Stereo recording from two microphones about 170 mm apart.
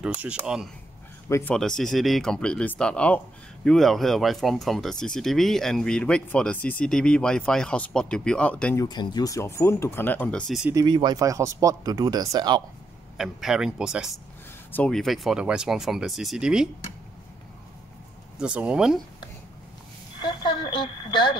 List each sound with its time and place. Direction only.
0.0 s speech: 10° right (ahead or behind)
1.3 s speech: 10° left (ahead or behind)
8.7 s speech: 25° left (ahead or behind); by 10.7 s centre (ahead or behind)
10.7 s speech: 25° right (ahead or behind)
13.2 s speech: 5° right (ahead or behind)
14.7 s speech: 5° left (ahead or behind)
18.4 s speech: 5° right (ahead or behind)
20.2 s speech: 30° left (ahead or behind)